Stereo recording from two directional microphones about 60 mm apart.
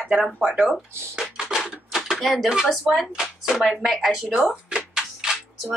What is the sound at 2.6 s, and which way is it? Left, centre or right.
A woman's voice, centre.